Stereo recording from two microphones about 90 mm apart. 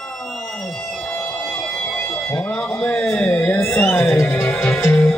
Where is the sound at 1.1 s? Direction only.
25° left (ahead or behind).